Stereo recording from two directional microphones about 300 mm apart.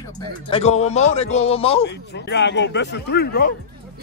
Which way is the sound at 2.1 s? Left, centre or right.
Left.